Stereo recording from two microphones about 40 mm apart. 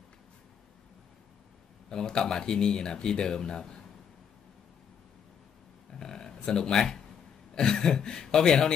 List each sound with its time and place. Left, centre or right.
1.9 s speech: centre
5.9 s a sound: centre
7.5 s speech: centre